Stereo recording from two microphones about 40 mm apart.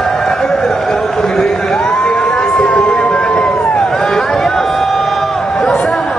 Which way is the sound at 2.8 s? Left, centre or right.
Left.